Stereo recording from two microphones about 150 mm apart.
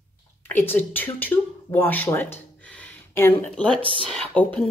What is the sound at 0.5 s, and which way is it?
Speech, 15° left (ahead or behind).